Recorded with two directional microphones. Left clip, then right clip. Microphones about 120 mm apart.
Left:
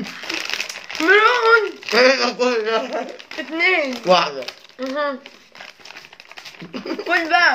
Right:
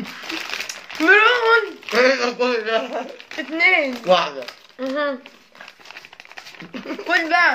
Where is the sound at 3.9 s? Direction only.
30° left (ahead or behind).